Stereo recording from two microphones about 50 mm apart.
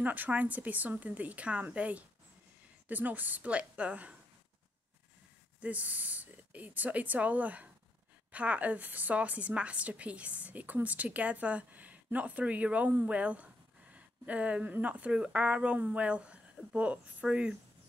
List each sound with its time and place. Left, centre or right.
0.0 s a woman's voice: right
5.6 s a woman's voice: right